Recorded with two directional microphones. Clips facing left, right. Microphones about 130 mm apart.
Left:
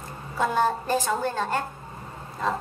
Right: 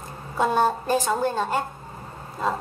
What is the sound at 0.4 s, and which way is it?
A woman's voice, 15° right (ahead or behind).